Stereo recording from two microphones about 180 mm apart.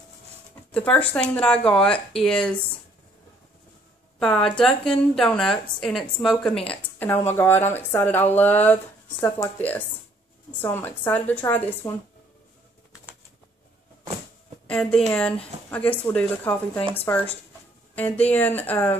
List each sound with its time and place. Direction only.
0.7 s speech: 10° left (ahead or behind)
4.2 s a woman's voice: 5° left (ahead or behind)
14.7 s a woman's voice: 5° left (ahead or behind)